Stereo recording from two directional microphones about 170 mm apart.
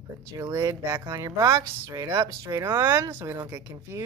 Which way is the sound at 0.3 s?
20° right (ahead or behind).